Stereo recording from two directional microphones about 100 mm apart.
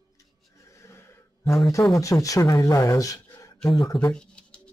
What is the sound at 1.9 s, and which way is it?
Speech, 35° left (ahead or behind).